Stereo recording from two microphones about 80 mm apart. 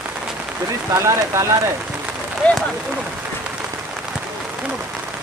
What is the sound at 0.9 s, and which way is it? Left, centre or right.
Speech, right.